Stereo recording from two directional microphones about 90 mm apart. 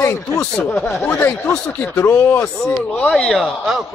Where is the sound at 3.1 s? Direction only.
5° left (ahead or behind).